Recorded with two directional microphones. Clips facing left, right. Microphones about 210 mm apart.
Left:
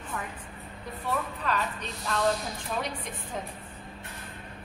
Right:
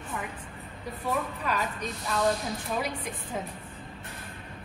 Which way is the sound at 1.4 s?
10° right (ahead or behind).